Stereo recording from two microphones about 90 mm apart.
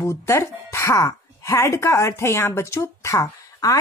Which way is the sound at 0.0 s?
30° left (ahead or behind).